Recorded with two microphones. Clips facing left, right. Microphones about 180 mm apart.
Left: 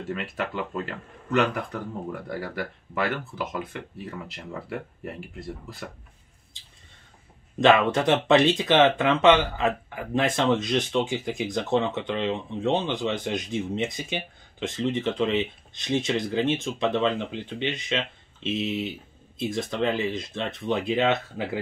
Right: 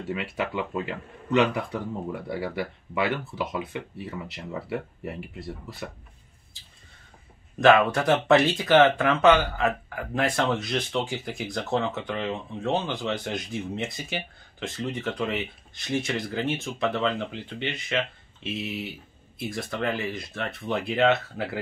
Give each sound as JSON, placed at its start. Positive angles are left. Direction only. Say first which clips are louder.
{"t": 0.1, "sound": "speech", "louder": "right 2 dB", "side_deg": -5}
{"t": 7.6, "sound": "speech", "louder": "right 1 dB", "side_deg": 0}
{"t": 7.9, "sound": "speech", "louder": "even", "side_deg": 20}